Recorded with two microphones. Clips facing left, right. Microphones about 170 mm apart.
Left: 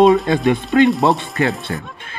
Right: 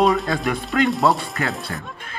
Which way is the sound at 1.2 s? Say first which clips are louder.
Left 6 dB; 20° left (ahead or behind).